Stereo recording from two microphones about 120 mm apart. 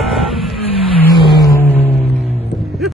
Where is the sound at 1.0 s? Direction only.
25° left (ahead or behind).